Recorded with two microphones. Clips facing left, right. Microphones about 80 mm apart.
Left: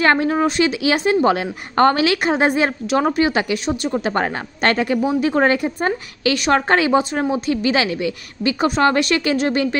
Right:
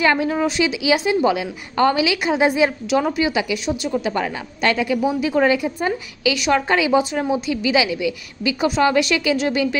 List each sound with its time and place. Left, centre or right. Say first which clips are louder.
0.0 s a woman's voice: left 2 dB; left